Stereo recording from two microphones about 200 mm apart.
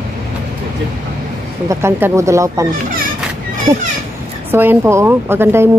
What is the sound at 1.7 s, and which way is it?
A woman's voice, 15° right (ahead or behind).